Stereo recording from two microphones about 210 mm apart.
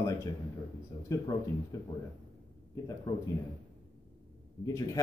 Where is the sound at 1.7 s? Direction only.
15° left (ahead or behind).